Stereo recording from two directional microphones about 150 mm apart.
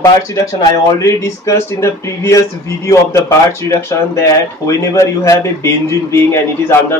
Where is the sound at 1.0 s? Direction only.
20° left (ahead or behind).